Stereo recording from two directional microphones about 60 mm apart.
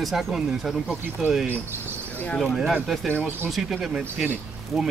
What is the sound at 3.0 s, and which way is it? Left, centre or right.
Speech, left.